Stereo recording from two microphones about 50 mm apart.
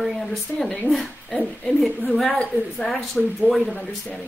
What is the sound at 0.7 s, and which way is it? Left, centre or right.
Speech, centre.